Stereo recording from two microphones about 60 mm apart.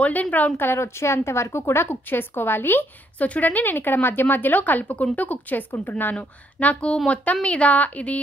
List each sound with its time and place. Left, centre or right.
0.0 s speech: left
0.6 s a woman's voice: left
6.1 s speech: left